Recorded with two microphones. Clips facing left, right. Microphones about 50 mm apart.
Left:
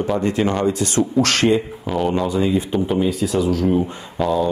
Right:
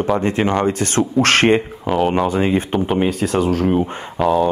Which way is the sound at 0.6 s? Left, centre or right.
Right.